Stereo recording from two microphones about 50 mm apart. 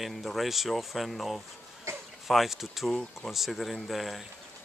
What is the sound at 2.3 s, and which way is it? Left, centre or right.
Speech, centre.